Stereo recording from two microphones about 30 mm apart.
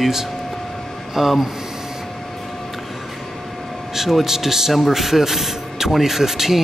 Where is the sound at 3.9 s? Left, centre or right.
Centre.